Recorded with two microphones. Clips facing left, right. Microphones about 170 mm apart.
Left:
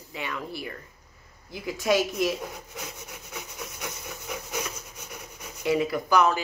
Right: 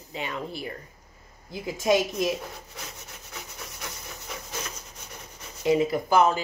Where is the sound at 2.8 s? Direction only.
15° left (ahead or behind).